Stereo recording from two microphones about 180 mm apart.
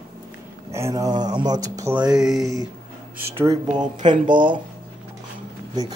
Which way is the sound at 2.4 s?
20° right (ahead or behind).